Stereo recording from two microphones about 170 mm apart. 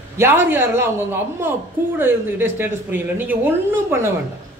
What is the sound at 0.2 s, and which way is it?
A woman's voice, 10° right (ahead or behind).